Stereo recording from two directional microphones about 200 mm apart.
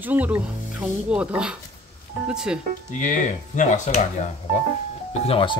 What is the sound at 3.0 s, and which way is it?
Speech, 40° left (ahead or behind).